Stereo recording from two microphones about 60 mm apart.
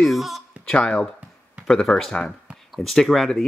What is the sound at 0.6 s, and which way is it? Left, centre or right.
Speech, centre.